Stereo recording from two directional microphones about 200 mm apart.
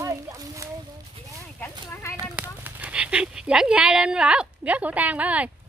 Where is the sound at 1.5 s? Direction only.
10° left (ahead or behind).